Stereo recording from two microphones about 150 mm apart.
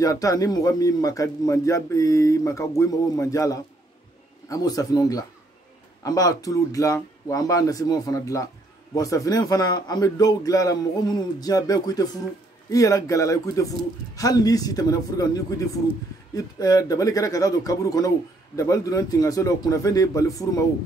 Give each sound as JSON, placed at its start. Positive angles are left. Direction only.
{"t": 0.0, "sound": "speech", "side_deg": 20}